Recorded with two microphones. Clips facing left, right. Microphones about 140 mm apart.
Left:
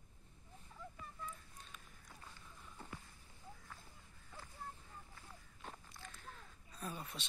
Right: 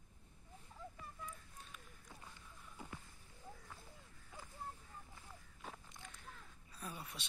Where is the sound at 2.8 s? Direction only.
10° right (ahead or behind).